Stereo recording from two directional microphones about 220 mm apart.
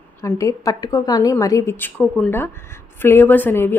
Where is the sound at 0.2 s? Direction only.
15° left (ahead or behind).